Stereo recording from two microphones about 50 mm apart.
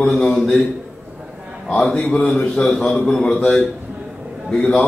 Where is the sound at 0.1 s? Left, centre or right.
Centre.